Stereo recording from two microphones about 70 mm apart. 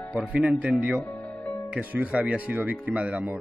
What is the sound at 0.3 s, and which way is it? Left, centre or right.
Speech, centre.